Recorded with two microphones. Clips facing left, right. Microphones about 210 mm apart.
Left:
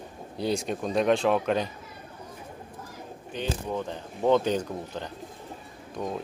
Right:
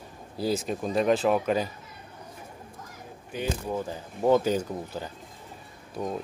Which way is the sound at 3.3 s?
5° right (ahead or behind).